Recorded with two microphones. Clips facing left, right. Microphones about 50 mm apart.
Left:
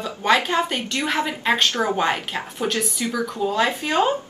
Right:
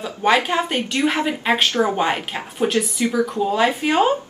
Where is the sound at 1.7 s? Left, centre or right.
Right.